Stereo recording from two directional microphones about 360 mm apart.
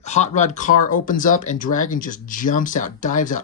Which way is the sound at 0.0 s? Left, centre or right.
Centre.